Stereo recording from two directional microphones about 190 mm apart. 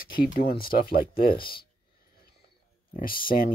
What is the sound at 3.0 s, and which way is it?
Speech, 50° left (ahead or behind).